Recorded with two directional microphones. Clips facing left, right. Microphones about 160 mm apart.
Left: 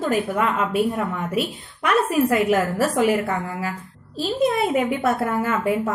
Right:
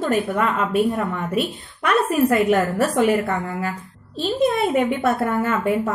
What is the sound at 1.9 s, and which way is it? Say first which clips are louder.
A woman's voice: right 1 dB; 5° left (ahead or behind).